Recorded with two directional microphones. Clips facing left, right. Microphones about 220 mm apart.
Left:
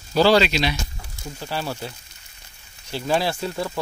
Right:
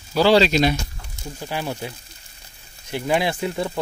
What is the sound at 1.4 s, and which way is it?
Speech, 15° right (ahead or behind).